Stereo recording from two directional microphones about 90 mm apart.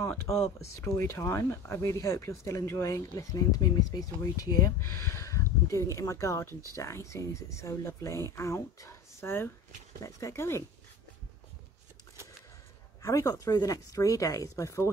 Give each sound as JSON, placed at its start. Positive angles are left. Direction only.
{"t": 0.6, "sound": "speech", "side_deg": 35}
{"t": 13.0, "sound": "speech", "side_deg": 40}